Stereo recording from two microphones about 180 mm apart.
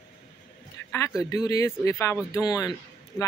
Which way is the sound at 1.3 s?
20° left (ahead or behind).